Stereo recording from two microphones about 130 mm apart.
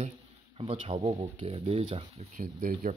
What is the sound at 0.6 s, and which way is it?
Speech, 50° right (ahead or behind).